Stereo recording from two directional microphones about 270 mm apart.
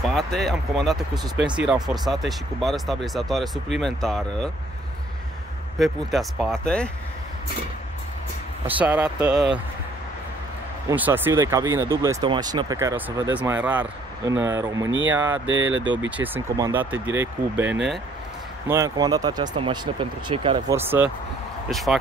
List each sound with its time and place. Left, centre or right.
0.0 s speech: centre
5.8 s speech: centre
8.6 s speech: centre
10.9 s speech: centre
15.3 s speech: right
16.5 s speech: centre
18.7 s speech: centre